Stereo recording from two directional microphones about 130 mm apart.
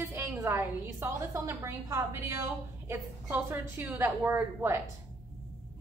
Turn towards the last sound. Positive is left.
turn(degrees=-20)  # may be behind; listen again after turning